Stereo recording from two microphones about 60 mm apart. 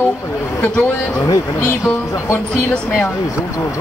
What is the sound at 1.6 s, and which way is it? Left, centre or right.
Speech, left.